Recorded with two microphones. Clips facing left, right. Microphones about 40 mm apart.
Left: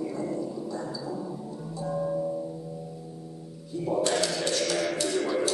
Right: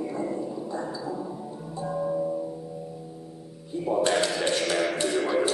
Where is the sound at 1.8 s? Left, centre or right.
Centre.